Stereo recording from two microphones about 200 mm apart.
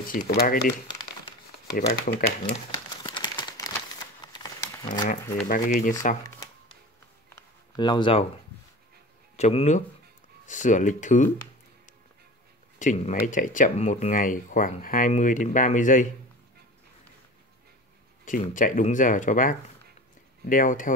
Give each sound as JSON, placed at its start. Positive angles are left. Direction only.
{"t": 0.1, "sound": "speech", "side_deg": 45}
{"t": 1.9, "sound": "speech", "side_deg": 55}
{"t": 2.7, "sound": "crumpling", "side_deg": 20}
{"t": 4.2, "sound": "a sound", "side_deg": 20}
{"t": 5.0, "sound": "speech", "side_deg": 40}
{"t": 6.2, "sound": "shuffling cards", "side_deg": 15}
{"t": 7.7, "sound": "speech", "side_deg": 20}
{"t": 9.4, "sound": "speech", "side_deg": 30}
{"t": 12.7, "sound": "speech", "side_deg": 40}
{"t": 18.2, "sound": "speech", "side_deg": 40}